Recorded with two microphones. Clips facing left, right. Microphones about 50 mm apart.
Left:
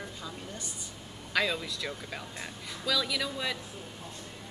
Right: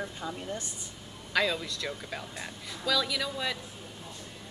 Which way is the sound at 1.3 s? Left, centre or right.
Centre.